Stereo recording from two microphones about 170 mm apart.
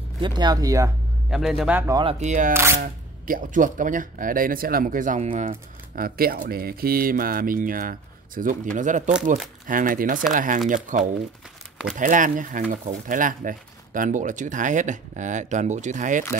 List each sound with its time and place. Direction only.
0.2 s speech: 25° right (ahead or behind)
1.3 s a man's voice: centre (ahead or behind)
1.9 s speech: 25° right (ahead or behind)
2.1 s speech: 45° right (ahead or behind)
2.5 s speech: 15° right (ahead or behind)
2.8 s speech: 55° right (ahead or behind); by 5.6 s 40° right (ahead or behind)
5.9 s speech: 60° right (ahead or behind)